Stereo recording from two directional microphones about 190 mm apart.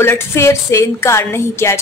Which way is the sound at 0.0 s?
15° left (ahead or behind).